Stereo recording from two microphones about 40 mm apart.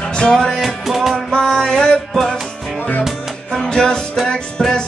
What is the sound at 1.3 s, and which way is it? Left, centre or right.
Music, centre.